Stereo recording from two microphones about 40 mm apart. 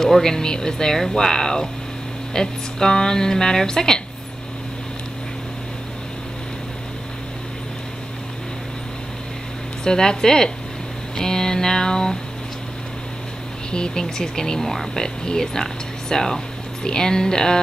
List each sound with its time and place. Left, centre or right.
0.0 s speech: centre
9.8 s speech: centre
11.1 s a sound: centre
13.7 s speech: left